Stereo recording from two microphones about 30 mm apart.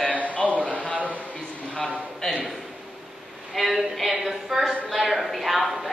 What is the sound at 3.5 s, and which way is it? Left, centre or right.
Speech, centre.